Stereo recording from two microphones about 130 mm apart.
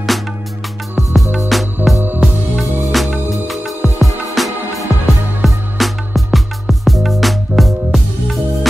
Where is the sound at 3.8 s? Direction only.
25° left (ahead or behind).